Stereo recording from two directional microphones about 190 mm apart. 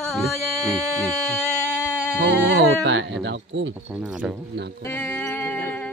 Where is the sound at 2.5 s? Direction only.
65° right (ahead or behind).